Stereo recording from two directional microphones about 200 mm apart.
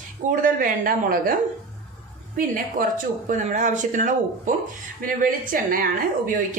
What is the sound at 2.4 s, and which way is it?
Speech, 40° right (ahead or behind).